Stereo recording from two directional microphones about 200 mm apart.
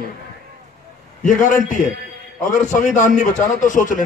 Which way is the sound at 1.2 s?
40° left (ahead or behind).